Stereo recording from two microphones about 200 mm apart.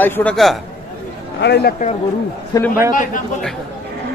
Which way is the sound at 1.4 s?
55° left (ahead or behind).